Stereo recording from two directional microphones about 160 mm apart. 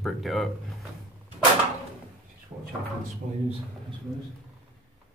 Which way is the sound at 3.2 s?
60° right (ahead or behind).